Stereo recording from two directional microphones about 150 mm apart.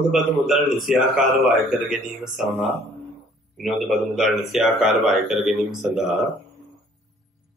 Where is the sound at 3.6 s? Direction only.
Centre (ahead or behind).